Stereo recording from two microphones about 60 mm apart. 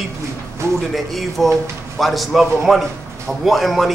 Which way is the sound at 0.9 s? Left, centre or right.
Centre.